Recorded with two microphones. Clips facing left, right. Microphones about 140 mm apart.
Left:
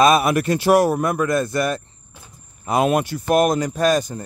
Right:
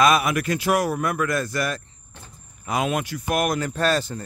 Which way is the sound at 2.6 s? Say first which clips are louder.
Left 6 dB; 35° left (ahead or behind).